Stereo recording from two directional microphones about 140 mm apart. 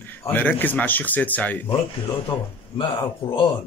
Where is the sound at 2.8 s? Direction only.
35° left (ahead or behind).